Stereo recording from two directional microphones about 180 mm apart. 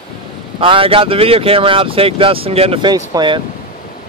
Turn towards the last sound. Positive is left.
turn(degrees=-25)  # may be behind; listen again after turning